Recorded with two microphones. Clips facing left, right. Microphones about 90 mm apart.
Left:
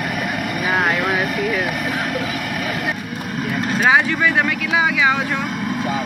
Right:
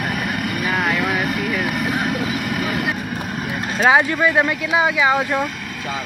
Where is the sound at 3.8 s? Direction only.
30° right (ahead or behind).